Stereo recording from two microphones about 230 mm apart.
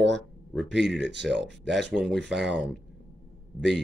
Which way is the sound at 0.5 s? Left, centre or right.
Centre.